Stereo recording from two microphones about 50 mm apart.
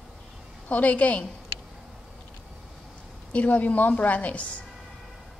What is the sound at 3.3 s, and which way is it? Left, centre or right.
Speech, left.